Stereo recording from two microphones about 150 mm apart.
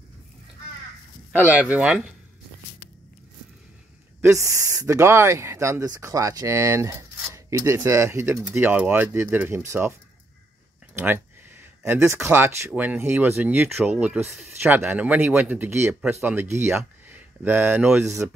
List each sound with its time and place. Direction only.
1.7 s speech: 5° right (ahead or behind)
4.2 s speech: 20° right (ahead or behind)
11.0 s speech: 15° right (ahead or behind)